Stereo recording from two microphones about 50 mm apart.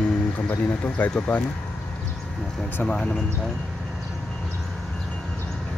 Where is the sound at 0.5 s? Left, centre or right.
Left.